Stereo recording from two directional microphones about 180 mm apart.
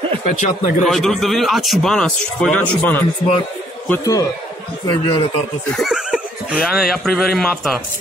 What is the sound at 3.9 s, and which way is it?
Speech, 20° left (ahead or behind).